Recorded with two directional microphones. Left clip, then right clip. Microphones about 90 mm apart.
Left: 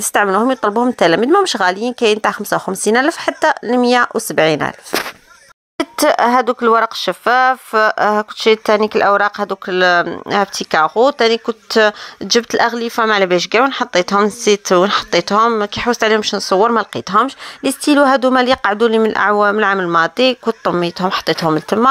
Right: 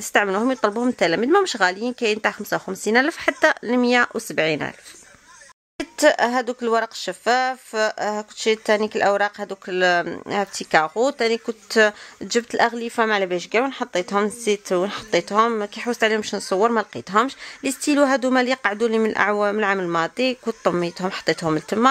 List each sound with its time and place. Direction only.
0.0 s a woman's voice: 20° left (ahead or behind)
3.1 s a woman's voice: 15° left (ahead or behind)
5.8 s a woman's voice: 30° left (ahead or behind); by 21.5 s 15° left (ahead or behind)